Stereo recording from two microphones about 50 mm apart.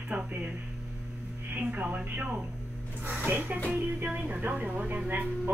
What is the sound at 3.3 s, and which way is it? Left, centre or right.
Speech, right.